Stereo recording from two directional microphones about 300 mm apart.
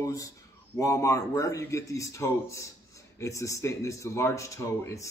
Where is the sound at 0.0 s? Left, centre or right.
Centre.